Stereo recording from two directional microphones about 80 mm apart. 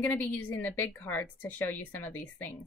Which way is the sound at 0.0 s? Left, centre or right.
Left.